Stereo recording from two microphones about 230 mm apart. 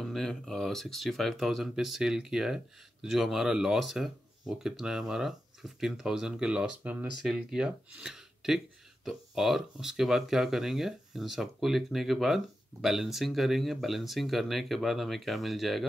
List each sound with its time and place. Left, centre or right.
0.1 s speech: centre